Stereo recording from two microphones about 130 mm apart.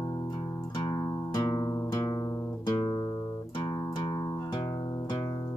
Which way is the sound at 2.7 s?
35° left (ahead or behind).